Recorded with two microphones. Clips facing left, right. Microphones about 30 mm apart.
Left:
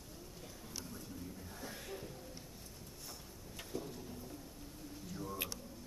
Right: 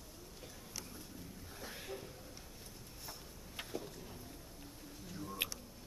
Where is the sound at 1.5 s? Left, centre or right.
Centre.